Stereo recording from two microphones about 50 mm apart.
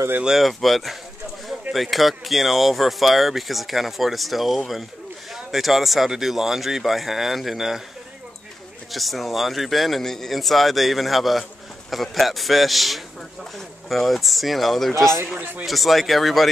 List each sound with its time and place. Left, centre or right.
0.4 s a man's voice: centre
8.9 s a man's voice: centre
15.3 s speech: right
15.6 s a man's voice: centre